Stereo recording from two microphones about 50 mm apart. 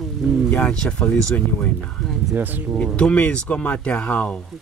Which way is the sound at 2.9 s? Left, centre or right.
Left.